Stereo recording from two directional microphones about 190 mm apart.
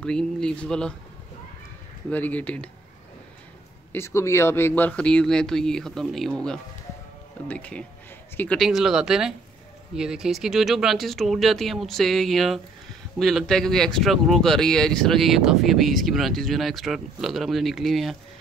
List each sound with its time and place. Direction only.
0.0 s speech: 5° left (ahead or behind)
2.0 s speech: 10° left (ahead or behind)
3.9 s speech: 15° left (ahead or behind)